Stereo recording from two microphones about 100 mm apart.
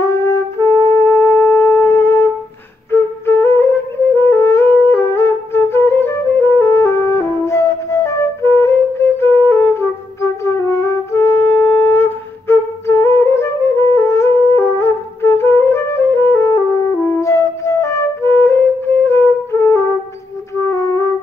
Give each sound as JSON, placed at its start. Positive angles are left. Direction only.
{"t": 0.0, "sound": "wind instrument", "side_deg": 25}
{"t": 2.9, "sound": "flute", "side_deg": 25}
{"t": 15.6, "sound": "music", "side_deg": 25}